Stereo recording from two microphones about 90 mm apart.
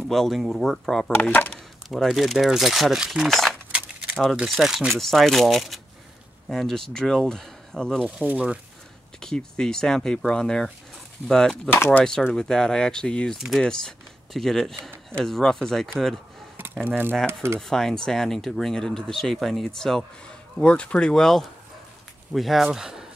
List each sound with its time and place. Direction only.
0.0 s speech: 5° left (ahead or behind)
8.0 s speech: 15° right (ahead or behind)
9.2 s speech: 5° left (ahead or behind)
11.7 s speech: 25° left (ahead or behind)
12.0 s speech: 5° left (ahead or behind)
16.8 s speech: 20° right (ahead or behind)
17.6 s speech: 5° left (ahead or behind)